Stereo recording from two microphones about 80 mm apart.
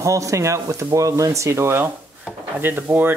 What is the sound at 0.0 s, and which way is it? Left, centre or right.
Speech, right.